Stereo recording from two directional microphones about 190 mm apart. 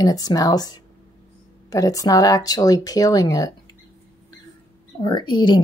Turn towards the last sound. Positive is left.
turn(degrees=25)  # may be behind; listen again after turning